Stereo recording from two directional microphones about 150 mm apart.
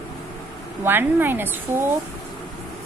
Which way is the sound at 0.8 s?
15° right (ahead or behind).